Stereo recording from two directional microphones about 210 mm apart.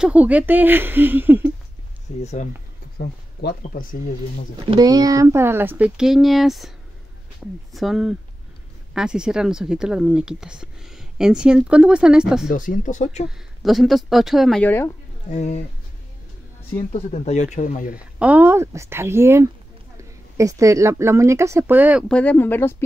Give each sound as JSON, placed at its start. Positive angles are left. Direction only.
{"t": 0.0, "sound": "speech", "side_deg": -5}
{"t": 2.1, "sound": "speech", "side_deg": 30}
{"t": 3.0, "sound": "speech", "side_deg": 45}
{"t": 4.6, "sound": "speech", "side_deg": -20}
{"t": 7.7, "sound": "speech", "side_deg": 0}
{"t": 12.4, "sound": "speech", "side_deg": 40}
{"t": 13.6, "sound": "speech", "side_deg": 0}
{"t": 15.2, "sound": "speech", "side_deg": 35}
{"t": 16.7, "sound": "speech", "side_deg": 30}
{"t": 17.9, "sound": "speech", "side_deg": -5}
{"t": 22.1, "sound": "speech", "side_deg": 5}